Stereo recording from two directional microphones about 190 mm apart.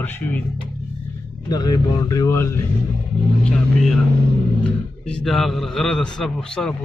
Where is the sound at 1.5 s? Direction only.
20° left (ahead or behind).